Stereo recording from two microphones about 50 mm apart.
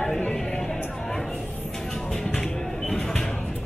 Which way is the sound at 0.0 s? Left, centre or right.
Centre.